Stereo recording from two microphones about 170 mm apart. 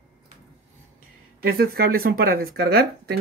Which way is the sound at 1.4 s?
60° right (ahead or behind).